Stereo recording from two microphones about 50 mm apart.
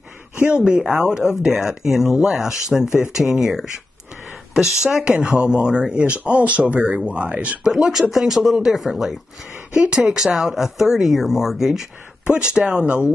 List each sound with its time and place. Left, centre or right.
0.4 s speech: right
7.6 s speech: centre
9.7 s speech: right
9.9 s speech: centre
12.4 s speech: centre